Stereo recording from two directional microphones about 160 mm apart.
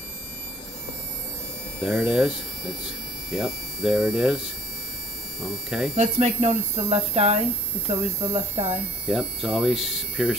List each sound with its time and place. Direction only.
1.8 s speech: centre (ahead or behind)
5.9 s speech: 40° right (ahead or behind)
8.6 s speech: 5° right (ahead or behind)